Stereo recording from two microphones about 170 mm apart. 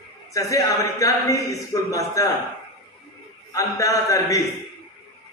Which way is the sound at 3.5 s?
20° left (ahead or behind).